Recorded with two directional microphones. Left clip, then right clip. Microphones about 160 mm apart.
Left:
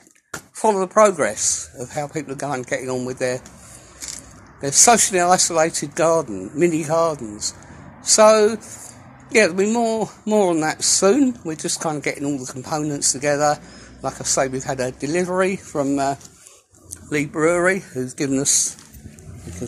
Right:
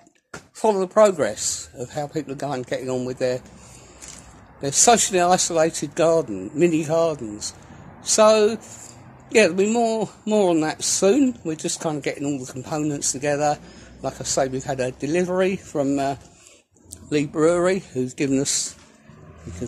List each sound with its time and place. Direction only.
0.6 s speech: 15° right (ahead or behind)
4.6 s speech: 15° right (ahead or behind)
17.3 s speech: 20° right (ahead or behind)
18.4 s speech: 15° right (ahead or behind)